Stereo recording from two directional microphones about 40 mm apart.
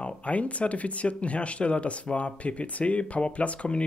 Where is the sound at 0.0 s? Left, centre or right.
Left.